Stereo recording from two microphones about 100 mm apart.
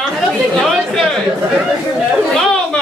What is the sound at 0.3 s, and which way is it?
Chatter, centre (ahead or behind).